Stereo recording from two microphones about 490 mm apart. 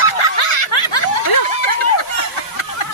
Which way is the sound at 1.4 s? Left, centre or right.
Left.